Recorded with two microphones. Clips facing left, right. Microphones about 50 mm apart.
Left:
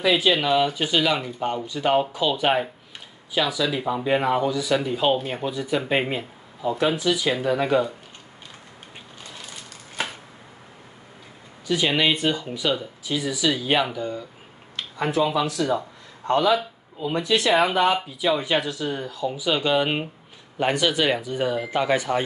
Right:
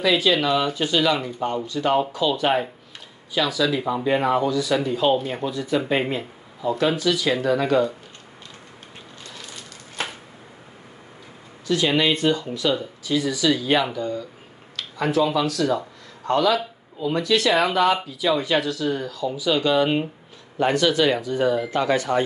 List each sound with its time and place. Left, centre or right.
0.0 s speech: centre
11.6 s speech: centre